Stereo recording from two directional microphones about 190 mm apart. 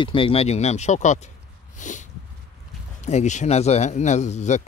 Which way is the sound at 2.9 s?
40° left (ahead or behind).